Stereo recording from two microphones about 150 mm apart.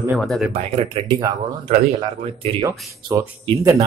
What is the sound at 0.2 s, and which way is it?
Speech, centre (ahead or behind).